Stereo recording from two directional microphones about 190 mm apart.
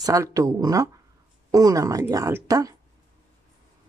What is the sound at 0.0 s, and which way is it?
Speech, 20° right (ahead or behind).